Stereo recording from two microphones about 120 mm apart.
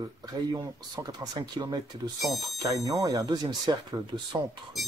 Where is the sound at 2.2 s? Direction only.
Centre (ahead or behind).